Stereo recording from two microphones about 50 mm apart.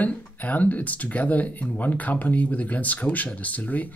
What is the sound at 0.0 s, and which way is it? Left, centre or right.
Speech, left.